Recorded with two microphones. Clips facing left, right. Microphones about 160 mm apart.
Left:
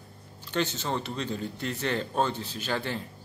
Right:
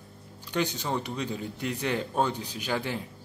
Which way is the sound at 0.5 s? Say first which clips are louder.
Even; 15° right (ahead or behind).